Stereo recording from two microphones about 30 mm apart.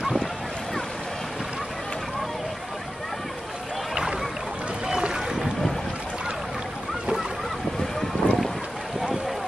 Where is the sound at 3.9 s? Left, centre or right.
Centre.